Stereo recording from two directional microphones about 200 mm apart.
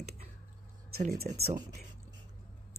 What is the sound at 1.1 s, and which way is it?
Speech, 50° right (ahead or behind).